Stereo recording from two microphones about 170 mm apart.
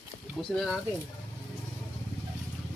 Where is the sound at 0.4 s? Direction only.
Centre (ahead or behind).